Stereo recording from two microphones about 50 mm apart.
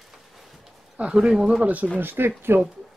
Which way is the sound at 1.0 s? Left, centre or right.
Centre.